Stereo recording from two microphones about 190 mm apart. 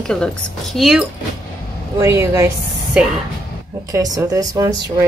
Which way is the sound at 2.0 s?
15° right (ahead or behind).